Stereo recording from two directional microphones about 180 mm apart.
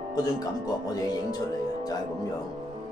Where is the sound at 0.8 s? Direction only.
20° left (ahead or behind).